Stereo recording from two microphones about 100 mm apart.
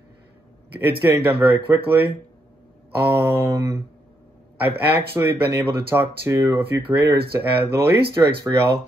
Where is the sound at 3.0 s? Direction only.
25° right (ahead or behind).